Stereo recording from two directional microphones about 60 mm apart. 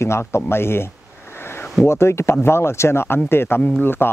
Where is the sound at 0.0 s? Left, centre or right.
Left.